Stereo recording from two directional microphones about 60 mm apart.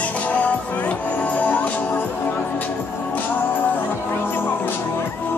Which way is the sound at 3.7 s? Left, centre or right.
Left.